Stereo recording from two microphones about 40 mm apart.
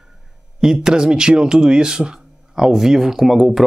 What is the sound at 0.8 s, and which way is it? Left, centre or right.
Speech, centre.